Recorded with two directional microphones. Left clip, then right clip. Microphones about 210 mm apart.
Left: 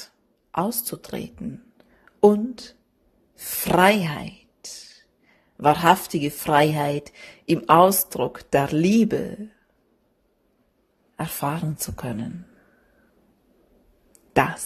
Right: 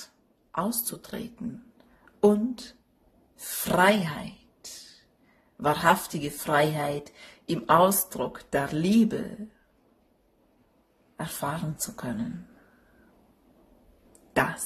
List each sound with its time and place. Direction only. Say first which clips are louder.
0.0 s a woman's voice: left 4 dB; 35° left (ahead or behind)
11.1 s a woman's voice: left 5 dB; 35° left (ahead or behind)
14.3 s speech: left 5 dB; 35° left (ahead or behind)